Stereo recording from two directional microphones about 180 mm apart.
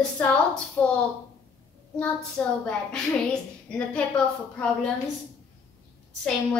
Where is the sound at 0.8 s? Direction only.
10° left (ahead or behind).